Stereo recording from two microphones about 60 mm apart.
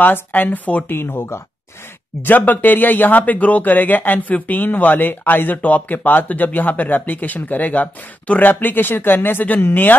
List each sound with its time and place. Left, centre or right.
0.0 s speech: left